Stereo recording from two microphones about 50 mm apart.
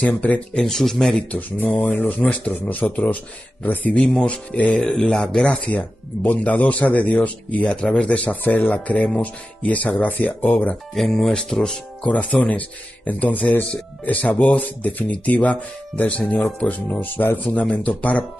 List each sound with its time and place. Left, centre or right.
0.0 s speech: left
0.6 s speech: centre
1.3 s speech: left
11.0 s speech: centre
12.0 s speech: left
17.4 s speech: left